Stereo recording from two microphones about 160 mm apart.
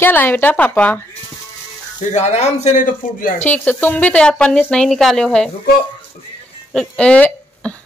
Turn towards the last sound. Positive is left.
turn(degrees=10)  # may be behind; listen again after turning